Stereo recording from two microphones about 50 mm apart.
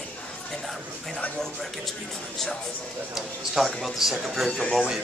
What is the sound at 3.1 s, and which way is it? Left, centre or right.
Speech, centre.